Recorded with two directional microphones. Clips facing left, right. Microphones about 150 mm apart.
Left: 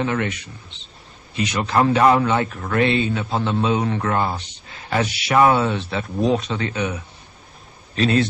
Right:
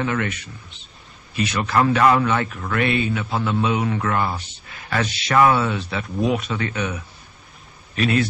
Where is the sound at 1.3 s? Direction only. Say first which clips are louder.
Left 1 dB; 15° left (ahead or behind).